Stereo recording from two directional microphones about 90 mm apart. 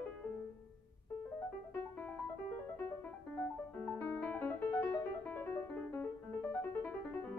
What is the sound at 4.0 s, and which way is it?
Music, 25° left (ahead or behind).